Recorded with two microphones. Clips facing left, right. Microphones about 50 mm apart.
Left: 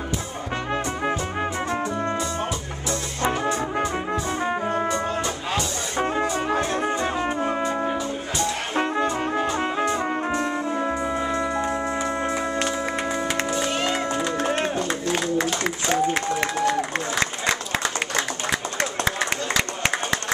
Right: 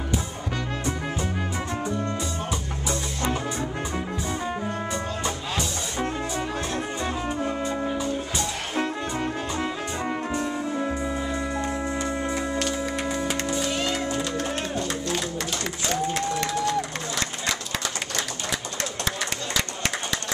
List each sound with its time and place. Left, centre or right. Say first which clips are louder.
1.4 s music: left 4 dB; left
3.9 s music: left 4 dB; left
10.3 s brass instrument: left 3 dB; left
11.1 s music: left 4 dB; left
11.4 s music: left 3 dB; centre
13.3 s music: left 2 dB; left
15.0 s a sound: left 5 dB; left
18.1 s a sound: left 5 dB; left